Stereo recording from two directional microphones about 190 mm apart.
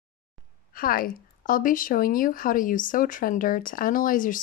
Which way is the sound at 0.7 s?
50° left (ahead or behind).